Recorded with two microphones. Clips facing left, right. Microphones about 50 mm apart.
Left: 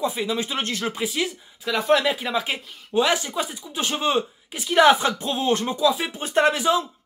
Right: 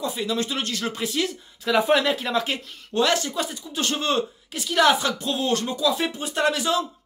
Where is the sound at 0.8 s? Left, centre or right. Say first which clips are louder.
Right 1 dB; centre.